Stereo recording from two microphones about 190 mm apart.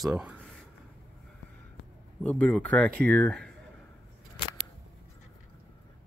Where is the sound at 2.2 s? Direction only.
5° left (ahead or behind).